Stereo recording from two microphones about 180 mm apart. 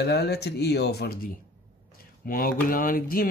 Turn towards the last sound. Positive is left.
turn(degrees=50)  # may be behind; listen again after turning